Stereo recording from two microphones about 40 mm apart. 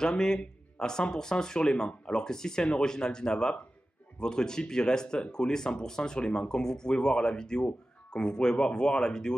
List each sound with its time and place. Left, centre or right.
0.0 s speech: centre